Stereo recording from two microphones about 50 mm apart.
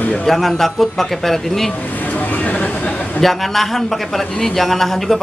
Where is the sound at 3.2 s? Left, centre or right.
Centre.